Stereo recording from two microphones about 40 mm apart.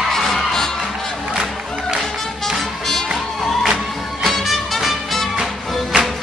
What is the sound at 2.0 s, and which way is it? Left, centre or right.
Music, centre.